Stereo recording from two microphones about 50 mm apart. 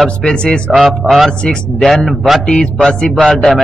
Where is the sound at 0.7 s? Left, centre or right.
Centre.